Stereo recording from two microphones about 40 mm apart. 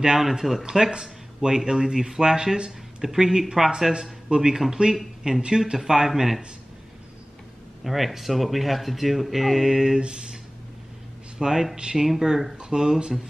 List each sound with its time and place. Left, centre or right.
0.0 s speech: centre
3.9 s a man's voice: right
4.4 s speech: centre
7.8 s a man's voice: centre
9.9 s speech: right
11.3 s speech: centre